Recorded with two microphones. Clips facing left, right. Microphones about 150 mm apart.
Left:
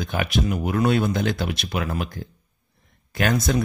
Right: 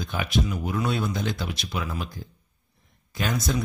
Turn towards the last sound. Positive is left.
turn(degrees=65)  # may be behind; listen again after turning